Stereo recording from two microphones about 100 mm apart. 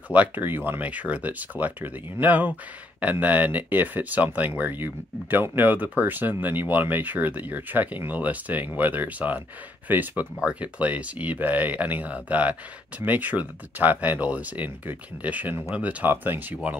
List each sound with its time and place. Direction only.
0.1 s speech: 15° right (ahead or behind)